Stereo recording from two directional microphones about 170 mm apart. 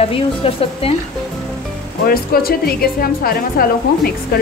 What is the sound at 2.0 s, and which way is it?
A woman's voice, 60° left (ahead or behind).